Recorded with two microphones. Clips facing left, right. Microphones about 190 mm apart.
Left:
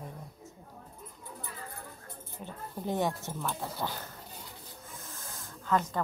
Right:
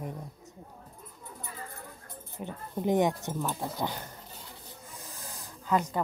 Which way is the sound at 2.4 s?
15° right (ahead or behind).